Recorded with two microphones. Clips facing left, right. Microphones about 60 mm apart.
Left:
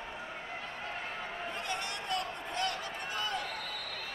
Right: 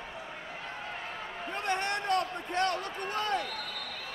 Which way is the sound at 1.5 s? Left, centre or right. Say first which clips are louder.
Right 9 dB; right.